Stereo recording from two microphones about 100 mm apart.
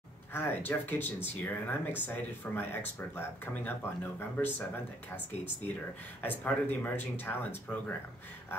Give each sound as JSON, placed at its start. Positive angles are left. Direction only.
{"t": 0.3, "sound": "speech", "side_deg": 20}
{"t": 6.2, "sound": "speech", "side_deg": 20}